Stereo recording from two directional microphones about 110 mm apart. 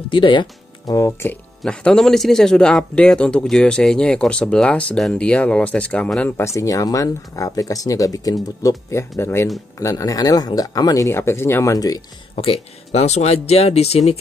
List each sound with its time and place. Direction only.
0.1 s speech: 50° left (ahead or behind)
0.8 s speech: 30° left (ahead or behind)
1.6 s speech: 10° left (ahead or behind)
6.3 s speech: 25° left (ahead or behind)
12.4 s speech: 70° left (ahead or behind)